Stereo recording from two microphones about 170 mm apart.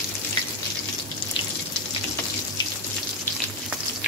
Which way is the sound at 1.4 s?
30° left (ahead or behind).